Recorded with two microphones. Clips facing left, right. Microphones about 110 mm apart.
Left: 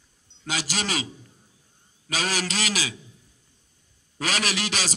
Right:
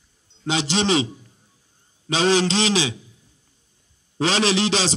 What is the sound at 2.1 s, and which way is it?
Speech, 25° right (ahead or behind).